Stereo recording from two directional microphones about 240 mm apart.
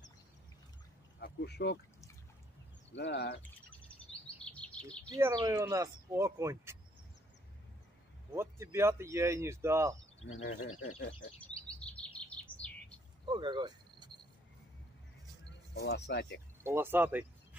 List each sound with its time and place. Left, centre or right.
1.2 s speech: left
2.9 s speech: left
4.5 s chirp: centre
5.1 s speech: centre
8.4 s speech: centre
10.3 s speech: left
11.0 s speech: left
11.8 s bird: centre
13.3 s cricket: centre
15.7 s speech: left
16.6 s speech: centre